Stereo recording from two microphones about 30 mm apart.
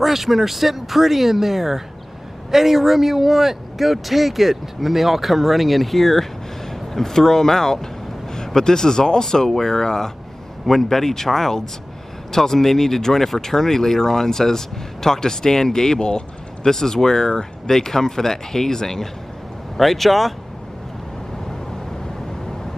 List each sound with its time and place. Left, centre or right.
0.0 s speech: centre
19.8 s speech: centre